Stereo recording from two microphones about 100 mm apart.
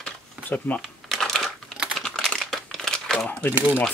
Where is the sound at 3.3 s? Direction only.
25° left (ahead or behind).